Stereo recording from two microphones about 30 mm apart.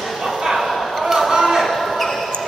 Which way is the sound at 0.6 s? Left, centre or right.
Centre.